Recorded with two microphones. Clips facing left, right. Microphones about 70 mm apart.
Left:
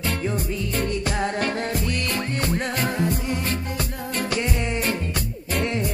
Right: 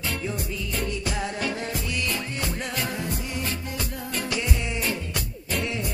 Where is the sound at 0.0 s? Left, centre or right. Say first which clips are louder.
Left 4 dB; left.